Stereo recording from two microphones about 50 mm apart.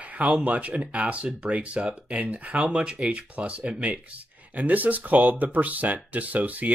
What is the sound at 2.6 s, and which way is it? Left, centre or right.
Speech, centre.